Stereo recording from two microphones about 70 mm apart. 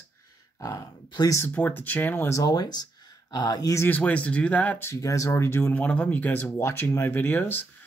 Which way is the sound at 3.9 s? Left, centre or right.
Centre.